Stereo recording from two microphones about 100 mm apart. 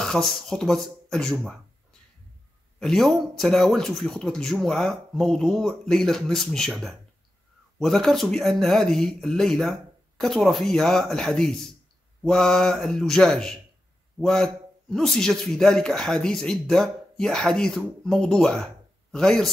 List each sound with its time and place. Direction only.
0.0 s speech: 5° left (ahead or behind)
2.8 s a man's voice: centre (ahead or behind)